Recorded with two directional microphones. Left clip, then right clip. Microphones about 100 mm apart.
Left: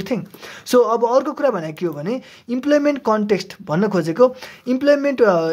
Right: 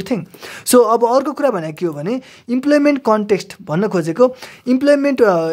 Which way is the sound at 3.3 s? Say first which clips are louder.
Right 2 dB; 30° right (ahead or behind).